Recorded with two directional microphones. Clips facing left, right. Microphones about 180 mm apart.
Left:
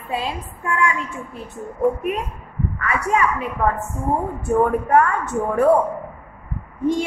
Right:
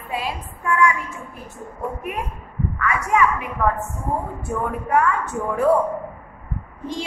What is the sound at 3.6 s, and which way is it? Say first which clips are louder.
Speech: even; 35° left (ahead or behind).